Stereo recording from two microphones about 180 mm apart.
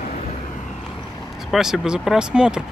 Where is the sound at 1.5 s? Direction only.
5° right (ahead or behind).